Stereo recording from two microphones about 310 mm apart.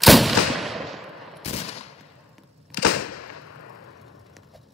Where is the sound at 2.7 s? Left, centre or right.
Left.